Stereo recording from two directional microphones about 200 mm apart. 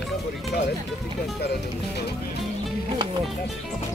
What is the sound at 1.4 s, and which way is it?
Speech, 55° left (ahead or behind).